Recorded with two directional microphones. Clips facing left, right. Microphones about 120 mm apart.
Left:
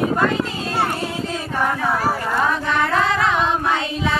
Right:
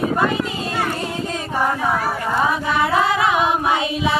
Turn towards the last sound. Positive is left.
turn(degrees=-15)  # may be behind; listen again after turning